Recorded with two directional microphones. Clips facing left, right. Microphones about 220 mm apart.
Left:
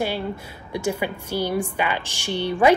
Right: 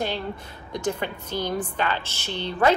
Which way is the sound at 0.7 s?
10° left (ahead or behind).